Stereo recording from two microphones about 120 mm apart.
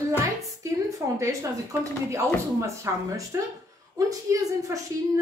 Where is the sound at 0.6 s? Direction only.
25° right (ahead or behind).